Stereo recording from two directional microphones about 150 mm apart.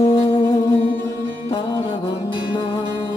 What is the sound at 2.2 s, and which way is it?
Music, 35° left (ahead or behind).